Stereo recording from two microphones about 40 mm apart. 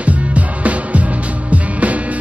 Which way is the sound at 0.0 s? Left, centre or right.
Right.